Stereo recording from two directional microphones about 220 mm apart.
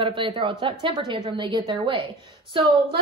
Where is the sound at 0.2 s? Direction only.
20° right (ahead or behind).